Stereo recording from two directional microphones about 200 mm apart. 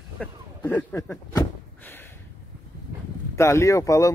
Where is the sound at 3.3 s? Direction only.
15° left (ahead or behind).